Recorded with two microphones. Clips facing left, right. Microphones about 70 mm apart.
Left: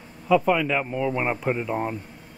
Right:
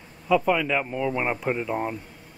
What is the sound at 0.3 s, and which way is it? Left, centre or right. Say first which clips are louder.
Speech: left 1 dB; centre.